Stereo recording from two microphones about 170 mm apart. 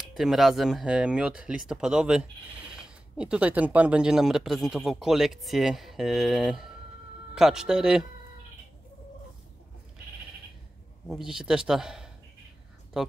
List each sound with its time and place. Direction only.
0.1 s speech: centre (ahead or behind)
11.1 s speech: centre (ahead or behind)